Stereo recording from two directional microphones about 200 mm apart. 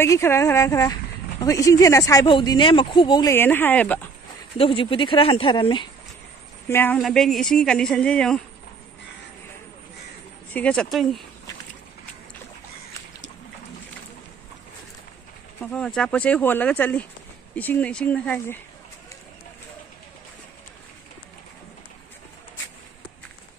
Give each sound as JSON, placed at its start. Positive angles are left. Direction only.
{"t": 0.0, "sound": "speech", "side_deg": 10}
{"t": 4.6, "sound": "speech", "side_deg": 25}
{"t": 6.7, "sound": "speech", "side_deg": 10}
{"t": 10.5, "sound": "speech", "side_deg": 5}
{"t": 15.6, "sound": "speech", "side_deg": 5}